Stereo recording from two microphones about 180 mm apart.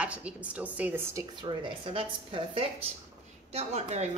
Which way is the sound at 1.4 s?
30° right (ahead or behind).